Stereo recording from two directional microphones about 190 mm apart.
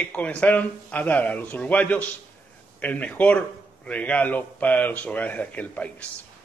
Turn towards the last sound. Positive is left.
turn(degrees=5)  # may be behind; listen again after turning